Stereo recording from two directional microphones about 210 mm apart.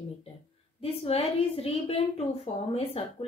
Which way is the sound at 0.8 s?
30° left (ahead or behind).